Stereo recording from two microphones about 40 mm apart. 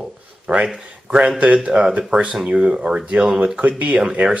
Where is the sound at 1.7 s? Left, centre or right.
Centre.